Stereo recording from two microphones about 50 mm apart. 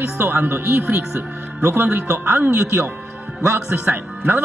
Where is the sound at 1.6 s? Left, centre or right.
Right.